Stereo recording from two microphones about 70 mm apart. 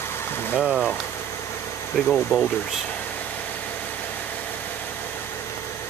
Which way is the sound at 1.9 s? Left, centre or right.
Centre.